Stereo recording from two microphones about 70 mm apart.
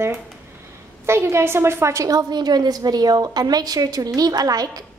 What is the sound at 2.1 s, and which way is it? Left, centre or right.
A woman's voice, right.